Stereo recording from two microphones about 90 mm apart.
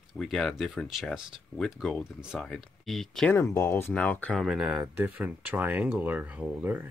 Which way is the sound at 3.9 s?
15° left (ahead or behind).